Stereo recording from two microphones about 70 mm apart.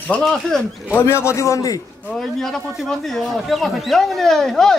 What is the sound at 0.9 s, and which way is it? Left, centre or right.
Speech, left.